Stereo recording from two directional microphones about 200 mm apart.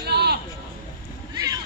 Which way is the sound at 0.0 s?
55° right (ahead or behind).